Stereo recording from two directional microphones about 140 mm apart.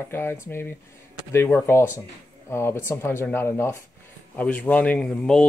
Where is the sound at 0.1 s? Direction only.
15° left (ahead or behind).